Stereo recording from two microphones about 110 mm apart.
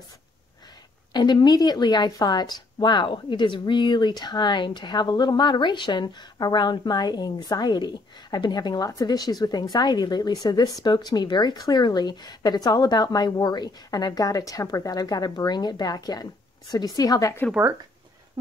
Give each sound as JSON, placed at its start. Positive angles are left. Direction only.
{"t": 1.1, "sound": "speech", "side_deg": 40}